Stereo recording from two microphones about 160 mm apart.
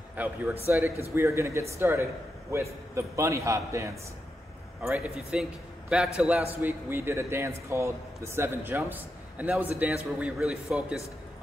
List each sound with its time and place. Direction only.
0.1 s a man's voice: 10° right (ahead or behind)